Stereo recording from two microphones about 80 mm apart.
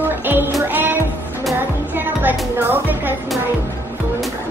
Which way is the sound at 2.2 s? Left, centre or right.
Right.